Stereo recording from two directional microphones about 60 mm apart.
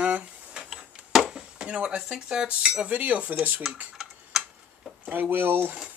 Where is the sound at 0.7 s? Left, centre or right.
Centre.